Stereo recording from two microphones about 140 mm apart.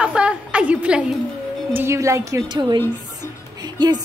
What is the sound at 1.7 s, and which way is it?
Speech, 20° right (ahead or behind).